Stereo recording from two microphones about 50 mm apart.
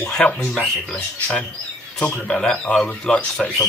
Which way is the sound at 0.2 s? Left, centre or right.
Left.